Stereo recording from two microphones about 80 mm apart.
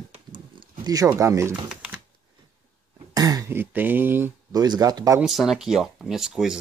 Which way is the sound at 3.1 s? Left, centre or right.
Right.